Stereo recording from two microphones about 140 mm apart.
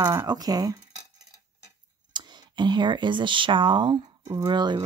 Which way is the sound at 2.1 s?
30° right (ahead or behind).